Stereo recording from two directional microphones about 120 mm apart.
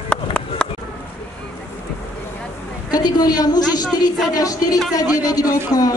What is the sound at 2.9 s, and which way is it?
A woman's voice, 35° left (ahead or behind).